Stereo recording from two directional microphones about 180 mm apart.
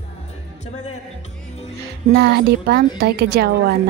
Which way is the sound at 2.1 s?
65° right (ahead or behind).